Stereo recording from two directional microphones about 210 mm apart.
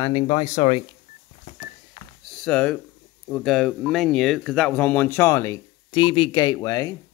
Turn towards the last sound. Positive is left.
turn(degrees=15)  # may be behind; listen again after turning